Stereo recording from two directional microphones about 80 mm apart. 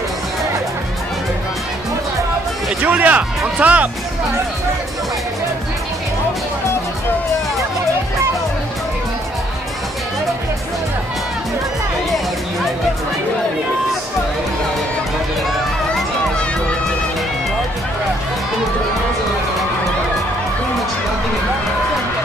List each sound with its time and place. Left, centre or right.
2.8 s speech: centre